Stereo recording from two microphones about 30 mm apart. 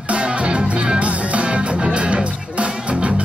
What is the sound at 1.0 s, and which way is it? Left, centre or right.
Music, right.